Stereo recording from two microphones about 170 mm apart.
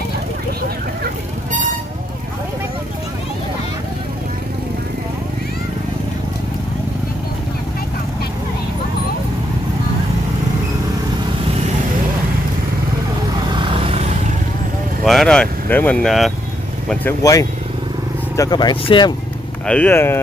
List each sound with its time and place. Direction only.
13.6 s vehicle: 35° right (ahead or behind)
15.0 s speech: 5° left (ahead or behind)
17.2 s speech: 20° left (ahead or behind)
19.6 s speech: 10° left (ahead or behind)